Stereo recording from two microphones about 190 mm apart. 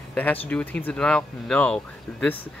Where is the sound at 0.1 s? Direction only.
10° left (ahead or behind).